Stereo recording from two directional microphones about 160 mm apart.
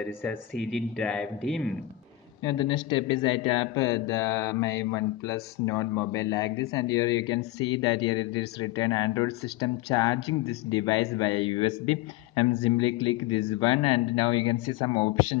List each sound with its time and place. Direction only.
0.6 s speech: 5° left (ahead or behind)
2.4 s a man's voice: 25° left (ahead or behind)